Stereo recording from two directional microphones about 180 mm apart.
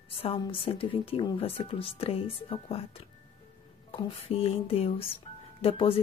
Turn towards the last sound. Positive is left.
turn(degrees=30)  # may be behind; listen again after turning